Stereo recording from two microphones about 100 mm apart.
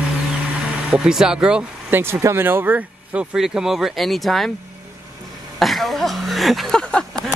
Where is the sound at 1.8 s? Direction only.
20° right (ahead or behind).